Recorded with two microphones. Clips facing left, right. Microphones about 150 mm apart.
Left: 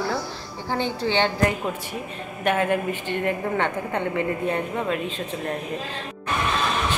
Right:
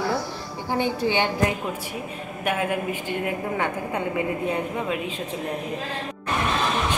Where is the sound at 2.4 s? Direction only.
10° right (ahead or behind).